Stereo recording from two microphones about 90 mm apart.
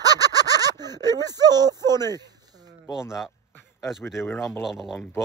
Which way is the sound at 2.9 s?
5° right (ahead or behind).